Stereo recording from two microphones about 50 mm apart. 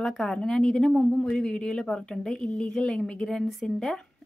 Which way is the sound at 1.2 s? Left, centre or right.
Centre.